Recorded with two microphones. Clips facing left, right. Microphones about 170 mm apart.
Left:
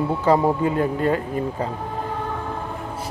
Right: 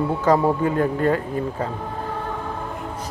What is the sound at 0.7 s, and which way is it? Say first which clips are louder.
Speech: right 1 dB; 40° right (ahead or behind).